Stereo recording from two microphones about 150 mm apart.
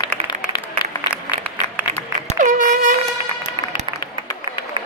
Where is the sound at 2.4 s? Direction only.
60° right (ahead or behind).